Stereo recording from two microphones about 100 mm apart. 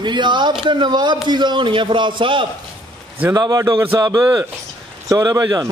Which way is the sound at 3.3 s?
40° right (ahead or behind).